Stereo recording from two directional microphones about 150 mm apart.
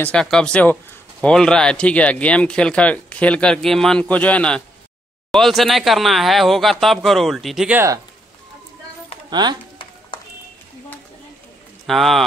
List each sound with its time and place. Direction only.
0.0 s speech: 5° left (ahead or behind)
9.3 s speech: 30° right (ahead or behind)
11.8 s speech: centre (ahead or behind)